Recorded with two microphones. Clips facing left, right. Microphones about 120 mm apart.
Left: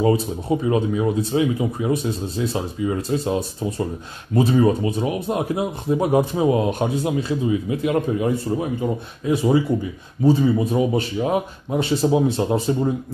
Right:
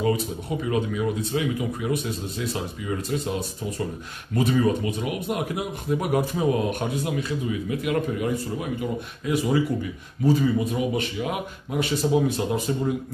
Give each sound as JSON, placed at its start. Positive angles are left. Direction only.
{"t": 0.0, "sound": "speech", "side_deg": 30}